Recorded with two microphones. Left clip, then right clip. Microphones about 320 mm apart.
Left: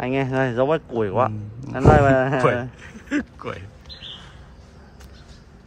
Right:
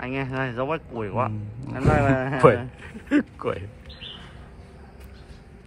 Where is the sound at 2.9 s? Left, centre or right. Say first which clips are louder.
Right 4 dB; centre.